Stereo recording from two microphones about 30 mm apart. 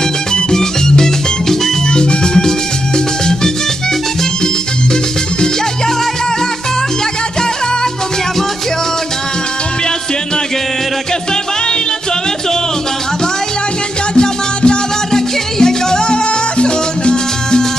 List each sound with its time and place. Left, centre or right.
0.3 s music: left
14.1 s music: left
15.1 s music: centre